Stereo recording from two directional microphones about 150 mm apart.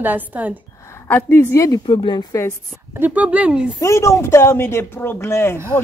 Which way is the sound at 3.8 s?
20° left (ahead or behind).